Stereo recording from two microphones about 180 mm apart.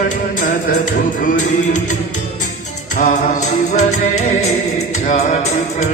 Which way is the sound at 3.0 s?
40° left (ahead or behind).